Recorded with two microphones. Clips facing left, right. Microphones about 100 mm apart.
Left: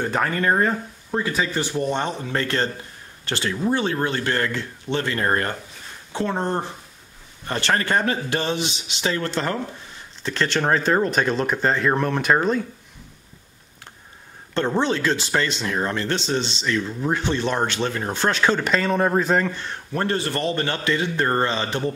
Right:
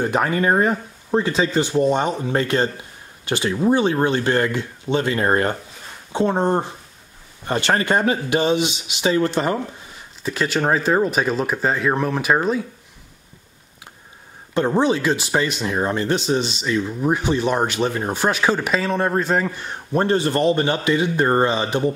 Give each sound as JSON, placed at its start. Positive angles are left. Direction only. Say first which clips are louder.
{"t": 0.0, "sound": "speech", "louder": "right 3 dB", "side_deg": -15}
{"t": 14.5, "sound": "speech", "louder": "right 4 dB", "side_deg": -10}